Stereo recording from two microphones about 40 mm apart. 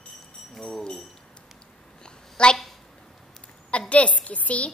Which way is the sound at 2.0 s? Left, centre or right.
Left.